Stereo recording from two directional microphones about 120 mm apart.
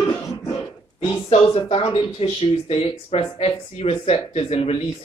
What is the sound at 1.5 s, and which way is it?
Speech, 50° left (ahead or behind).